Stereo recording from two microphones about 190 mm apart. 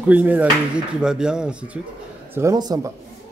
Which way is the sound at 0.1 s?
10° right (ahead or behind).